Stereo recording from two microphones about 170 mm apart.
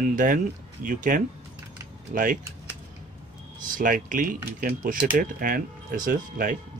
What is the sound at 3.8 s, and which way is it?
Speech, 55° right (ahead or behind).